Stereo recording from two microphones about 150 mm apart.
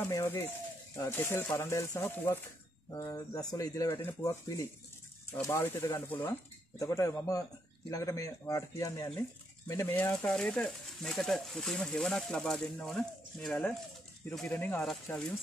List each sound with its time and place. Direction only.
0.0 s speech: 15° left (ahead or behind)